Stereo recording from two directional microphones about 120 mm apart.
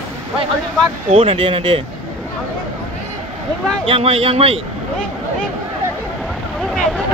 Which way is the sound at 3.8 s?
50° right (ahead or behind).